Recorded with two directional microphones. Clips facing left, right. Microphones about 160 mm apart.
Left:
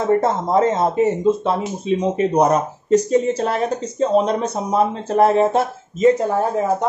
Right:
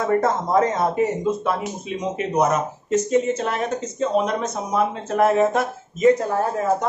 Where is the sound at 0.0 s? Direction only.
25° left (ahead or behind).